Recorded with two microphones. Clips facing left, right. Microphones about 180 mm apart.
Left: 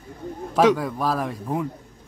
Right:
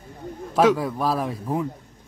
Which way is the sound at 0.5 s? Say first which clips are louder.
Even; centre (ahead or behind).